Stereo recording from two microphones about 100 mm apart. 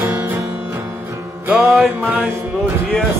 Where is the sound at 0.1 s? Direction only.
20° right (ahead or behind).